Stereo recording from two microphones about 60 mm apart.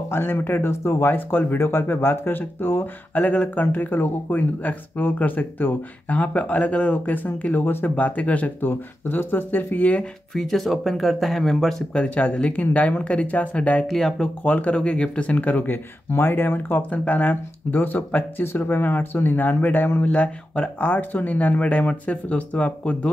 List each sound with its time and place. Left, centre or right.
0.1 s speech: left
7.2 s speech: left
10.3 s speech: centre
11.9 s speech: left
13.8 s speech: centre
14.4 s speech: left